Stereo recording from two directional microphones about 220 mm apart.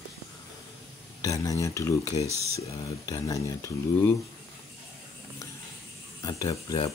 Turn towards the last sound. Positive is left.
turn(degrees=20)  # may be behind; listen again after turning